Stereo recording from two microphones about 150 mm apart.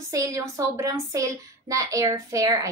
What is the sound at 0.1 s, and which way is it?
Speech, 20° right (ahead or behind).